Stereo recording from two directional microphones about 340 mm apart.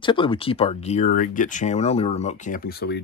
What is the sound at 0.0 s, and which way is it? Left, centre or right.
Speech, centre.